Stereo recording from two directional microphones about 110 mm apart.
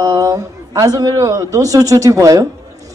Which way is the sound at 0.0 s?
30° right (ahead or behind).